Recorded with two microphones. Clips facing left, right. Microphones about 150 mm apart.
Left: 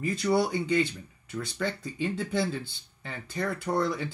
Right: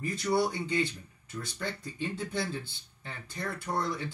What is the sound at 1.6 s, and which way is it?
Speech, 90° left.